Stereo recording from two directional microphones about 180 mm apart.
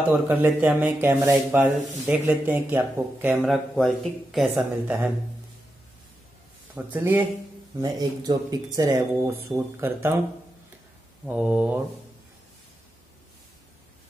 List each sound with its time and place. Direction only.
0.3 s speech: 10° right (ahead or behind)
6.7 s speech: 10° right (ahead or behind)
7.8 s speech: 20° right (ahead or behind)
11.2 s speech: 5° right (ahead or behind)